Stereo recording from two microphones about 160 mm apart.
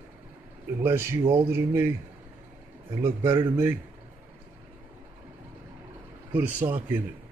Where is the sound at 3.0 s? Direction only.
15° right (ahead or behind).